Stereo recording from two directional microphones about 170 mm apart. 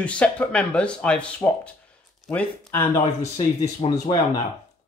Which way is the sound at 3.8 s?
30° left (ahead or behind).